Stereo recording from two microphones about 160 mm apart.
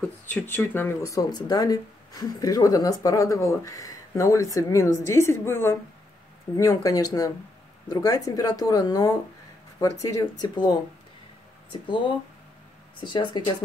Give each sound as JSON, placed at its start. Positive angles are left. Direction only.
{"t": 0.0, "sound": "a woman's voice", "side_deg": 10}
{"t": 13.0, "sound": "speech", "side_deg": 30}